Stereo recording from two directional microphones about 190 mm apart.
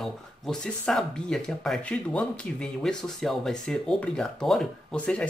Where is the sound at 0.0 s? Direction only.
5° left (ahead or behind).